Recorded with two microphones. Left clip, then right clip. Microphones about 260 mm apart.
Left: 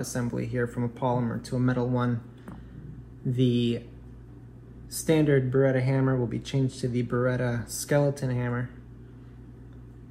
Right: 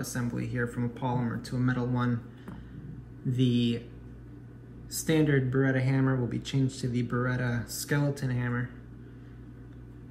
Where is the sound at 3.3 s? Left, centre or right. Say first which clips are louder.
Left 3 dB; left.